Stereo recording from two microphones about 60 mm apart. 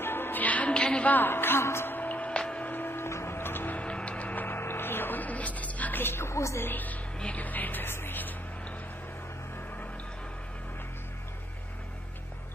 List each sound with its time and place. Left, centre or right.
0.0 s music: left
0.7 s a sound: centre
1.0 s speech: left
2.0 s music: left
2.7 s music: left
3.1 s music: left
3.8 s music: centre
4.5 s music: left
6.6 s speech: left